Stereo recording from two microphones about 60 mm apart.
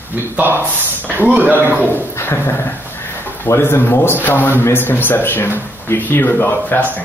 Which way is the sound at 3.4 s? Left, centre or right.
Left.